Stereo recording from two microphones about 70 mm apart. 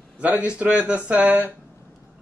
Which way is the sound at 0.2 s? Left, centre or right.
Right.